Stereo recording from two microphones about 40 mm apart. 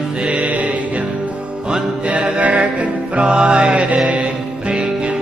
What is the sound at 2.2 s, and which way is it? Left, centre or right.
Music, right.